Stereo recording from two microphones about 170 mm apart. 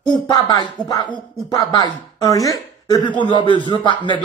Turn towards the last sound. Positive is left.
turn(degrees=25)  # may be behind; listen again after turning